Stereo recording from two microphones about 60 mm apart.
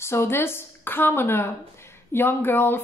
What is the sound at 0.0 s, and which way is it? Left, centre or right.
A woman's voice, left.